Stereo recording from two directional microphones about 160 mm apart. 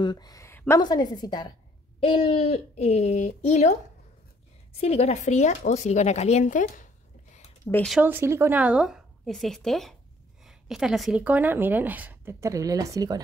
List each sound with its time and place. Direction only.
0.0 s speech: 25° left (ahead or behind)
0.7 s a woman's voice: 25° left (ahead or behind); by 3.7 s 45° left (ahead or behind)
4.7 s speech: 40° left (ahead or behind)
7.6 s speech: 10° left (ahead or behind)
8.0 s speech: 15° right (ahead or behind)